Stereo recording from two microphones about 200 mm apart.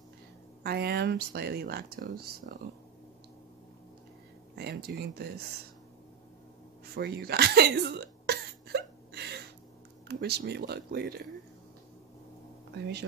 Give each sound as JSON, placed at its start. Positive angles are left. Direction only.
{"t": 0.7, "sound": "speech", "side_deg": -50}
{"t": 4.6, "sound": "speech", "side_deg": -55}
{"t": 7.0, "sound": "a sound", "side_deg": -50}
{"t": 10.0, "sound": "speech", "side_deg": -55}
{"t": 12.7, "sound": "speech", "side_deg": -55}